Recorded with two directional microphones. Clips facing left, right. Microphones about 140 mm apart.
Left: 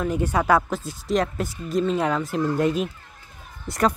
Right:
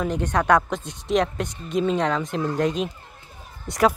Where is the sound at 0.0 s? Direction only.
5° left (ahead or behind).